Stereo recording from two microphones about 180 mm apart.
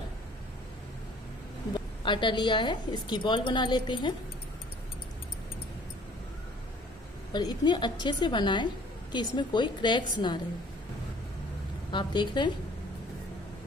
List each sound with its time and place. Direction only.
2.0 s a woman's voice: 25° left (ahead or behind)
7.3 s a woman's voice: 25° left (ahead or behind)
11.9 s a woman's voice: 25° left (ahead or behind)